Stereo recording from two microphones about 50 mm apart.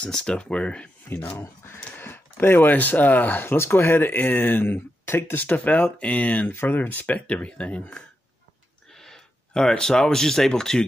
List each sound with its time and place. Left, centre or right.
0.0 s speech: centre
1.6 s speech: left
2.0 s speech: left
6.5 s speech: left
8.9 s speech: centre